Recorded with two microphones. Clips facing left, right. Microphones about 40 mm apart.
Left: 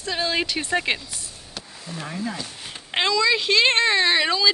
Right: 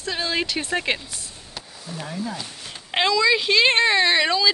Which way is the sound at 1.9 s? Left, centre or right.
Left.